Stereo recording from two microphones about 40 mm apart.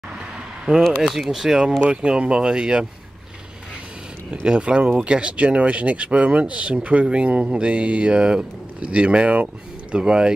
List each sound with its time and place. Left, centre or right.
0.7 s speech: right
1.0 s speech: centre
1.4 s speech: centre
4.5 s speech: right